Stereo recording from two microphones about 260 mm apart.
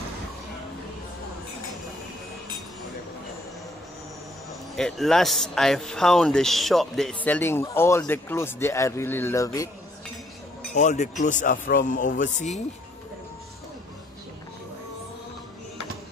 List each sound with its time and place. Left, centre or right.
4.5 s speech: centre
10.7 s speech: left